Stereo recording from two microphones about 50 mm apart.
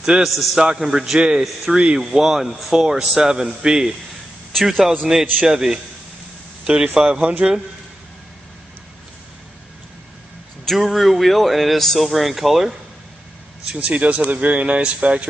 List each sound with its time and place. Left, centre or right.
0.2 s speech: centre
0.6 s speech: centre
7.1 s speech: right
10.6 s speech: centre
13.7 s speech: right